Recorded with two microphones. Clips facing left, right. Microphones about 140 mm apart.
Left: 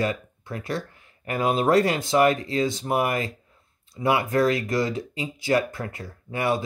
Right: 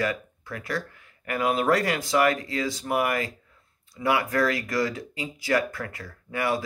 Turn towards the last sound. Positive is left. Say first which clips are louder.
# left 2 dB
turn(degrees=25)  # may be behind; listen again after turning